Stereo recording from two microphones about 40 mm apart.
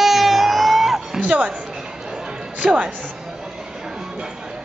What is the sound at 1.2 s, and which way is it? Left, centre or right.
Speech, right.